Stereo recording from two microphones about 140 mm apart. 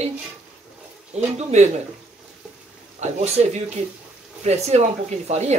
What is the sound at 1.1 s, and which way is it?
Speech, 55° right (ahead or behind).